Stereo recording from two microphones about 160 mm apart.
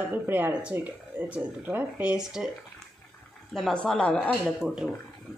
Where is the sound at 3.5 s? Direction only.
5° left (ahead or behind).